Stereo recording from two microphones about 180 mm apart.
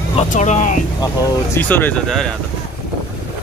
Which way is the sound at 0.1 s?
40° left (ahead or behind).